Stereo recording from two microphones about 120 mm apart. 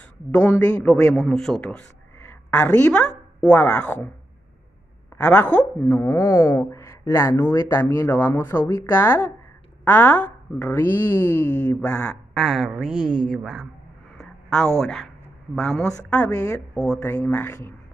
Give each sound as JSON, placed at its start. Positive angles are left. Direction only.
{"t": 0.3, "sound": "speech", "side_deg": 10}
{"t": 5.1, "sound": "speech", "side_deg": 15}
{"t": 12.1, "sound": "speech", "side_deg": 0}
{"t": 14.1, "sound": "a sound", "side_deg": 5}
{"t": 14.8, "sound": "speech", "side_deg": 5}
{"t": 17.0, "sound": "speech", "side_deg": 15}